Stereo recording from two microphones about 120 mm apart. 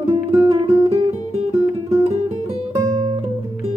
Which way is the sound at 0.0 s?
60° right (ahead or behind).